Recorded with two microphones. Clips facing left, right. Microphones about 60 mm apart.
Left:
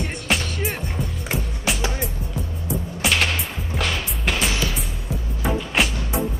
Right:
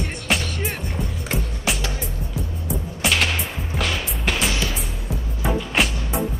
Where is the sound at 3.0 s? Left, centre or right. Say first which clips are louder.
Even; centre.